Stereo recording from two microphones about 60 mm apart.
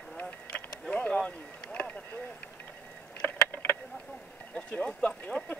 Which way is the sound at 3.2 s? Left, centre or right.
Left.